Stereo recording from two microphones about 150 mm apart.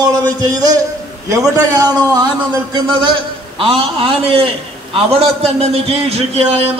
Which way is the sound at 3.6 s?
40° right (ahead or behind).